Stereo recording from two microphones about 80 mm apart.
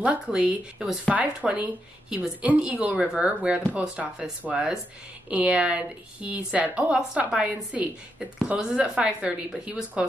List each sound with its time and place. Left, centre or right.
0.0 s a woman's voice: centre